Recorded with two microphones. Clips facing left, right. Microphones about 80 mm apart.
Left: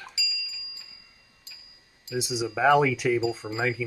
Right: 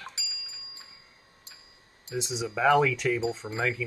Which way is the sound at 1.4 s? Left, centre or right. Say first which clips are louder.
Left 1 dB; right.